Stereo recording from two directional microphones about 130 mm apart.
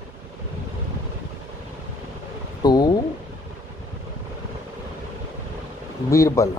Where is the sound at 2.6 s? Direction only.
30° left (ahead or behind).